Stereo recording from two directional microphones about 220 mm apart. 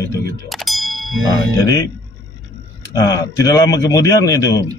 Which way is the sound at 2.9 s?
15° left (ahead or behind).